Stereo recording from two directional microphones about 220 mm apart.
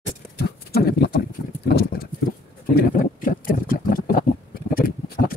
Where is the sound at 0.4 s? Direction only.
45° left (ahead or behind).